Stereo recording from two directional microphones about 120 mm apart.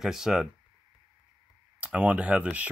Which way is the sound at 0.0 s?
5° right (ahead or behind).